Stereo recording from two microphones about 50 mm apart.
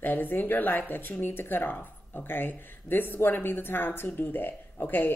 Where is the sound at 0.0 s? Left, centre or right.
Left.